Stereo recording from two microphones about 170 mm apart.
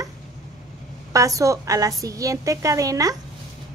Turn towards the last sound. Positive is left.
turn(degrees=-20)  # may be behind; listen again after turning